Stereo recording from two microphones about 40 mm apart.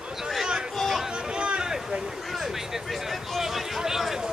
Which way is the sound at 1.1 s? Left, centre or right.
Right.